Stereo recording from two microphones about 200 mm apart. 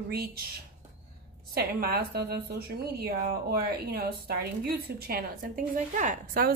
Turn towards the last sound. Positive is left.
turn(degrees=-45)  # may be behind; listen again after turning